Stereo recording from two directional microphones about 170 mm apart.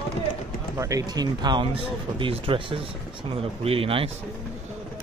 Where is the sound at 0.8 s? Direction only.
20° right (ahead or behind).